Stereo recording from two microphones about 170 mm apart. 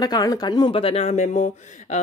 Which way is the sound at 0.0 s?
25° left (ahead or behind).